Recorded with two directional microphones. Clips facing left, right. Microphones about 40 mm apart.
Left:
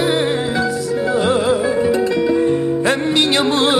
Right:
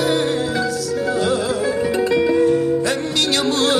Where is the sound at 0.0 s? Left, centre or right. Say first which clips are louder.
Left 2 dB; left.